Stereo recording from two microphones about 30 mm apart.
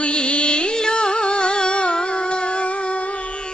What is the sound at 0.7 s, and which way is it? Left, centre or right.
Music, left.